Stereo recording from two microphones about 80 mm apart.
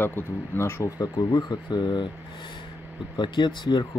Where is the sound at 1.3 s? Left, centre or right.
Left.